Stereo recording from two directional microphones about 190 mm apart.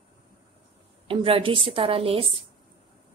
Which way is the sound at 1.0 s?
30° right (ahead or behind).